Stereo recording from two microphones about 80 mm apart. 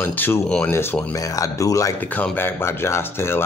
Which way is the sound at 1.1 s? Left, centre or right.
Left.